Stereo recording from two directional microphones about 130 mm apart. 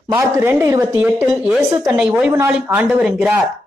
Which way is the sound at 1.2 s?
5° right (ahead or behind).